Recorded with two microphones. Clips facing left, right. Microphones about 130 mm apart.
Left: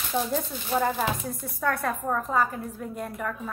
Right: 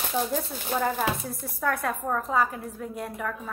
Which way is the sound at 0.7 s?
10° left (ahead or behind).